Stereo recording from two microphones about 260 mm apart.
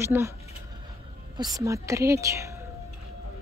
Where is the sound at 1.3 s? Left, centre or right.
Centre.